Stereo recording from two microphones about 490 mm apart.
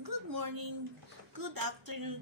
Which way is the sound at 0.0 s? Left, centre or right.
Right.